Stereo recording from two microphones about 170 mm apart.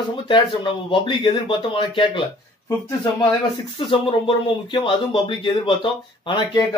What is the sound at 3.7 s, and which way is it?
Speech, 30° left (ahead or behind).